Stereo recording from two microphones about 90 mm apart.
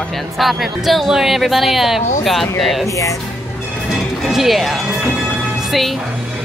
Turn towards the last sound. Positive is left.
turn(degrees=0)  # may be behind; listen again after turning